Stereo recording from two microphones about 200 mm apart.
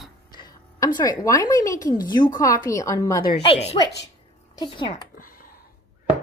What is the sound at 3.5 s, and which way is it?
Speech, 30° left (ahead or behind).